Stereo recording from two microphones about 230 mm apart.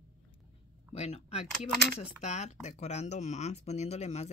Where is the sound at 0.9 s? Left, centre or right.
Left.